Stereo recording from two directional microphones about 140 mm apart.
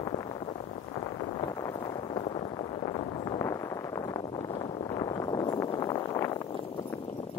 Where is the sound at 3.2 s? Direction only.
25° left (ahead or behind).